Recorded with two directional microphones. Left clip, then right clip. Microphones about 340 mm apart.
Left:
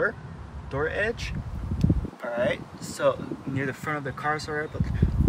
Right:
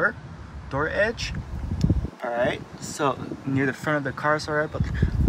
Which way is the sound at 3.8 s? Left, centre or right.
Left.